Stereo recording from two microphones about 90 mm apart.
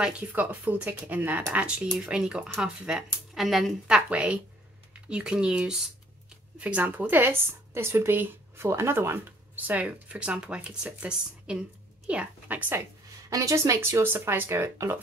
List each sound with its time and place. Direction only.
0.0 s speech: 15° right (ahead or behind); by 3.7 s centre (ahead or behind)
3.8 s a woman's voice: 15° right (ahead or behind)
13.3 s a woman's voice: 40° right (ahead or behind)
13.7 s speech: 25° right (ahead or behind)